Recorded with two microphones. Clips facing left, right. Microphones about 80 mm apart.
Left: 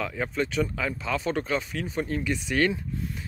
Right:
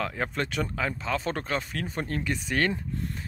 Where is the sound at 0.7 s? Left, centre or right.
Right.